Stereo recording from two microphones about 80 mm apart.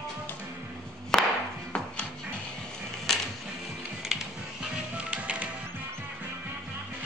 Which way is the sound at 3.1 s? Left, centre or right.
Centre.